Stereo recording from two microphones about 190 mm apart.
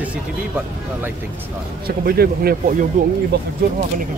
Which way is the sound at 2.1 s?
50° right (ahead or behind).